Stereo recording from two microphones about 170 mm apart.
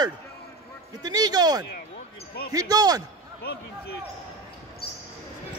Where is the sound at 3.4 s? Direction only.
65° left (ahead or behind).